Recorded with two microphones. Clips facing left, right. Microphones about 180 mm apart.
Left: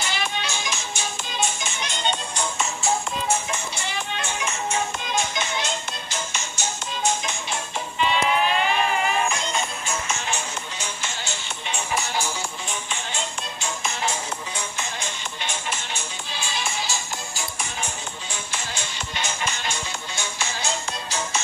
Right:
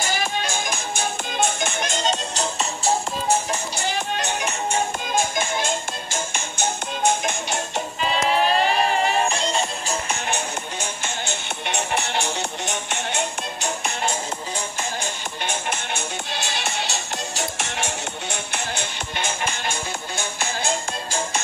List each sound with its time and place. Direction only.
0.0 s music: 45° right (ahead or behind)
4.2 s music: 65° right (ahead or behind)
5.0 s music: 50° right (ahead or behind); by 7.8 s 75° right (ahead or behind)
8.0 s music: 35° right (ahead or behind)
10.0 s music: 60° right (ahead or behind)
15.4 s music: 55° right (ahead or behind)